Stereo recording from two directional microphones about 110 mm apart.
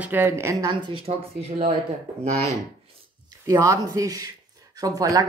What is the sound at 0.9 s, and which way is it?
Speech, 55° right (ahead or behind).